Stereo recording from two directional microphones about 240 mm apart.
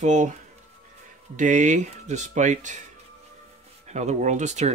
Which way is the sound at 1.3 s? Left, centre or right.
Right.